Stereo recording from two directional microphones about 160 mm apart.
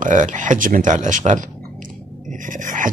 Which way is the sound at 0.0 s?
50° right (ahead or behind).